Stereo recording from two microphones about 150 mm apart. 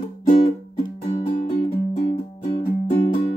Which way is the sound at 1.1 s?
35° left (ahead or behind).